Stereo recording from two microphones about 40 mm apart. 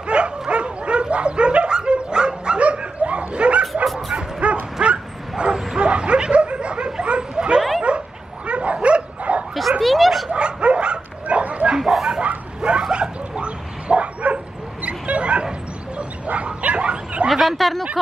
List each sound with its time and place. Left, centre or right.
0.0 s bow-wow: right
5.8 s a sound: right
7.9 s dog: right
9.6 s dog: centre
10.3 s dog: right
11.9 s bow-wow: centre
12.2 s bow-wow: right
17.3 s a sound: centre